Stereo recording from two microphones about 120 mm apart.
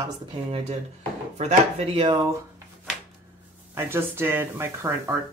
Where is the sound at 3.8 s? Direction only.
20° right (ahead or behind).